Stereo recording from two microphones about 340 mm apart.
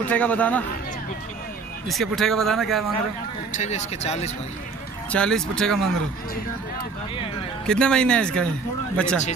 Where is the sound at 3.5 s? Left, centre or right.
Centre.